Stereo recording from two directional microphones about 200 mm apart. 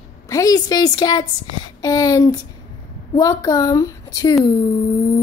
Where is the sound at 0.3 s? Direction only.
15° left (ahead or behind).